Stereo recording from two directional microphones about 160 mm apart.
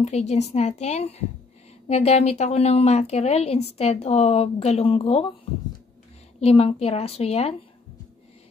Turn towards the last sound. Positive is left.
turn(degrees=40)  # may be behind; listen again after turning